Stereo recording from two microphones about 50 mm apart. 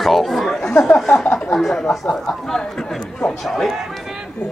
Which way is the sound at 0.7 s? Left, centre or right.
Left.